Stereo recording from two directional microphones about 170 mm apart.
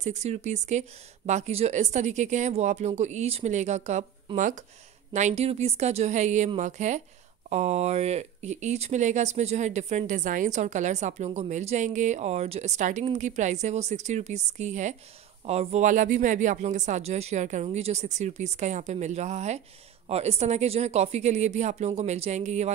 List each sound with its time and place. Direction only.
0.0 s speech: 40° right (ahead or behind)